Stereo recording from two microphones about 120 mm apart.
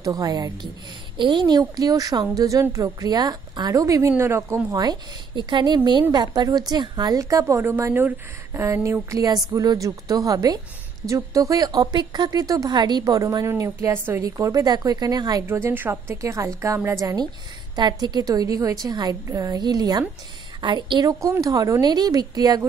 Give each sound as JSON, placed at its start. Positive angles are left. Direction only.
{"t": 0.0, "sound": "a woman's voice", "side_deg": -30}
{"t": 4.7, "sound": "a woman's voice", "side_deg": -35}
{"t": 15.4, "sound": "a woman's voice", "side_deg": -20}